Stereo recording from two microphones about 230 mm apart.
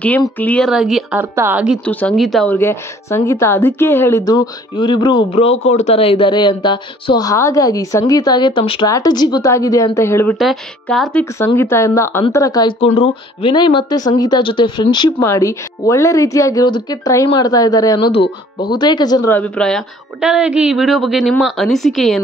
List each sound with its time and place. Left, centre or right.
0.2 s a woman's voice: centre
1.9 s speech: centre
10.4 s a woman's voice: centre